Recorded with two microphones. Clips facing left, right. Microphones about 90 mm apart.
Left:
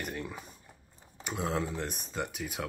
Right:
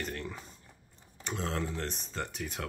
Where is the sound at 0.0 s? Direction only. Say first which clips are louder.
Even; 10° left (ahead or behind).